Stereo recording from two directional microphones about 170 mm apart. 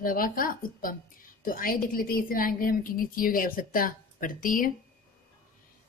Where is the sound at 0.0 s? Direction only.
55° left (ahead or behind).